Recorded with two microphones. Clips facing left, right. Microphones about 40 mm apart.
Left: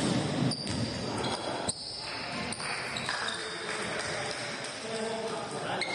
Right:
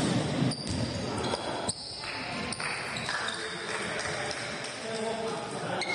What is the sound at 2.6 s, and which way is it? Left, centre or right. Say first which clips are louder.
Music: right 1 dB; right.